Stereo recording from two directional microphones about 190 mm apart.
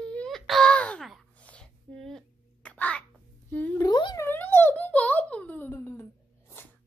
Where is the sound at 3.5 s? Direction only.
10° left (ahead or behind).